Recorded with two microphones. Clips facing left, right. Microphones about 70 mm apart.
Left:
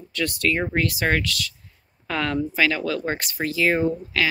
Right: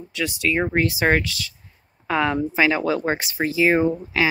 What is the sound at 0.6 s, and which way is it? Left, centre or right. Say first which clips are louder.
Speech: right 3 dB; right.